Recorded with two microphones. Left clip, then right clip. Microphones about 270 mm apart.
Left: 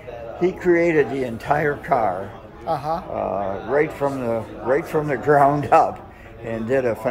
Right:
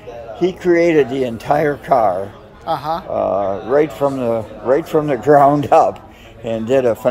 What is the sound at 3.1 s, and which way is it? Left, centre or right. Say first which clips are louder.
Speech: right 7 dB; right.